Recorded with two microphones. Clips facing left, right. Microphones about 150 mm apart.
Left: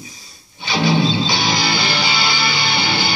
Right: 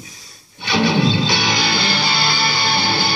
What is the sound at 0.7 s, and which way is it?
Music, 65° right (ahead or behind).